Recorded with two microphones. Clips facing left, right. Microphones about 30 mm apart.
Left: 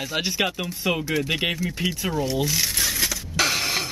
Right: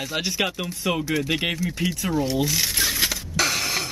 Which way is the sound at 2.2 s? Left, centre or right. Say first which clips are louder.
Left 1 dB; centre.